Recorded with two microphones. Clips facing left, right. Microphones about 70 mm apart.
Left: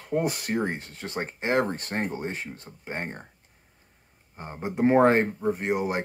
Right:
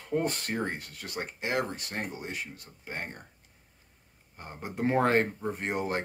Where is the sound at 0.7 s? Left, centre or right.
Left.